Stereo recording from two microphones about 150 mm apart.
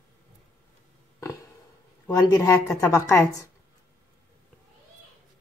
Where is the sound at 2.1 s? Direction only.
20° left (ahead or behind).